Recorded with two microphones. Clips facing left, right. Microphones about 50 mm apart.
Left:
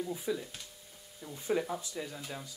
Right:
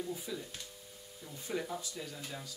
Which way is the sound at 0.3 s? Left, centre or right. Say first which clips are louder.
Left 6 dB; left.